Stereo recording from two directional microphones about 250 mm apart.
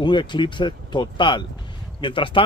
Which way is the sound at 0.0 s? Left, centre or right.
Centre.